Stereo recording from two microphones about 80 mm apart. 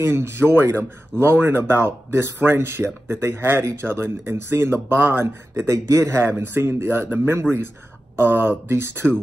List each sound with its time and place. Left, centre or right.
0.0 s speech: right